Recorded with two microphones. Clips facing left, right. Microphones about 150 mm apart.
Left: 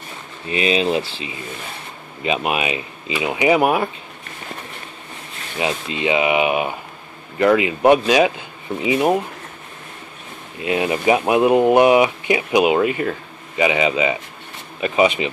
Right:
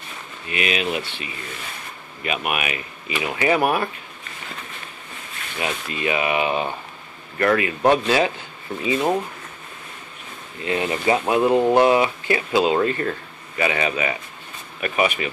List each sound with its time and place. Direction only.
0.5 s speech: 30° left (ahead or behind)
5.6 s speech: 20° left (ahead or behind)
10.6 s speech: 15° left (ahead or behind)